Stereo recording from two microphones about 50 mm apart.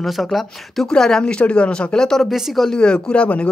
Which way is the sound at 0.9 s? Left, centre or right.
Centre.